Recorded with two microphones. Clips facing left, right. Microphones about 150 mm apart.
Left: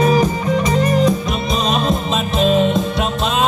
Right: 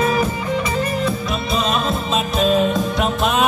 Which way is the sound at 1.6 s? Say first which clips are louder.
Left 2 dB; 35° left (ahead or behind).